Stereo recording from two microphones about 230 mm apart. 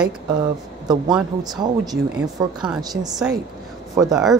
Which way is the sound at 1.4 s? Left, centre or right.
Centre.